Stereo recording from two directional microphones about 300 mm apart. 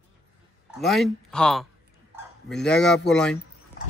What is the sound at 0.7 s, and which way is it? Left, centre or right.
Speech, centre.